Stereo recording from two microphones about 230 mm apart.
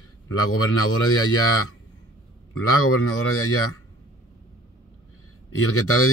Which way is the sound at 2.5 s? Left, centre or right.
Left.